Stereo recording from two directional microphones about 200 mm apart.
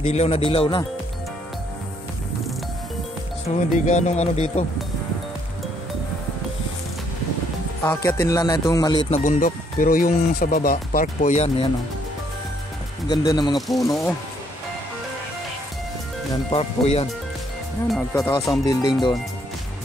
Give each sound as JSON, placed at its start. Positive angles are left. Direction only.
{"t": 0.0, "sound": "a man's voice", "side_deg": 30}
{"t": 3.4, "sound": "speech", "side_deg": 35}
{"t": 7.8, "sound": "a man's voice", "side_deg": 15}
{"t": 9.1, "sound": "speech", "side_deg": 40}
{"t": 13.1, "sound": "a man's voice", "side_deg": 20}
{"t": 13.6, "sound": "speech", "side_deg": 0}
{"t": 16.5, "sound": "speech", "side_deg": 30}
{"t": 18.1, "sound": "a man's voice", "side_deg": 15}